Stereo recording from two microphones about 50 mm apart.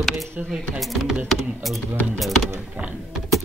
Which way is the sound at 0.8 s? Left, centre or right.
Centre.